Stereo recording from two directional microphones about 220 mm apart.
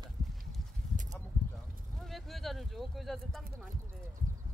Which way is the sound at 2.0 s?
Centre (ahead or behind).